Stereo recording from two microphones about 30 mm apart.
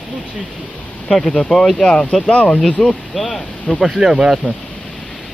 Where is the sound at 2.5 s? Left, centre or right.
Centre.